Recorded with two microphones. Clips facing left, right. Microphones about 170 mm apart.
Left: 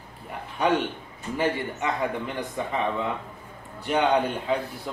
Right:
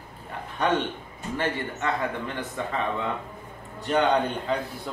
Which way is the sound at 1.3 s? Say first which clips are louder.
Left 3 dB; 10° left (ahead or behind).